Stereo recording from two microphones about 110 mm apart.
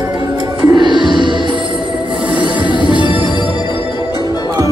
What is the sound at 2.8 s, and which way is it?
Music, 45° left (ahead or behind).